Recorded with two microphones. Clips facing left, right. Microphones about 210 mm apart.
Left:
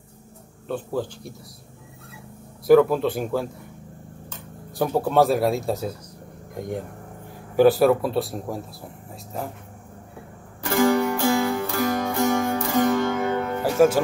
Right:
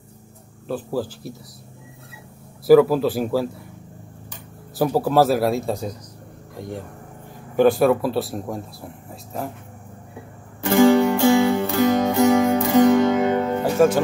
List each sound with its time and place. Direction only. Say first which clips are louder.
0.7 s speech: right 2 dB; 5° right (ahead or behind)
2.6 s speech: right 2 dB; 5° right (ahead or behind)
4.7 s speech: right 2 dB; 5° right (ahead or behind)
6.5 s speech: left 2 dB; 20° left (ahead or behind)
7.5 s speech: even; 5° left (ahead or behind)
10.6 s music: right 5 dB; 25° right (ahead or behind)
13.7 s speech: even; 5° left (ahead or behind)